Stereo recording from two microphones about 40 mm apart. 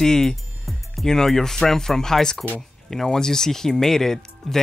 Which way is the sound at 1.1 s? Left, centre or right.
Centre.